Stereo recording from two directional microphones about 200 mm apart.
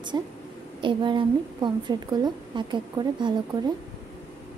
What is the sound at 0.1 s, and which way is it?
A woman's voice, 20° right (ahead or behind).